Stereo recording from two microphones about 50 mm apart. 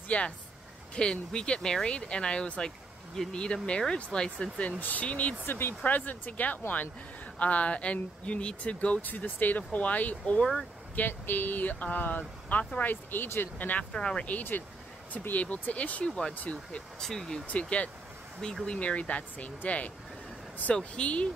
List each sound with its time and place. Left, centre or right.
0.1 s speech: left
4.6 s speech: left
5.4 s speech: left
5.9 s speech: left
10.4 s speech: centre
11.0 s speech: left
13.9 s speech: centre
14.2 s speech: left
17.0 s speech: centre
17.5 s speech: left
18.4 s speech: centre
18.8 s speech: left